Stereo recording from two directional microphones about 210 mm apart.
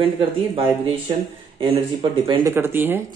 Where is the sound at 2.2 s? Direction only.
25° right (ahead or behind).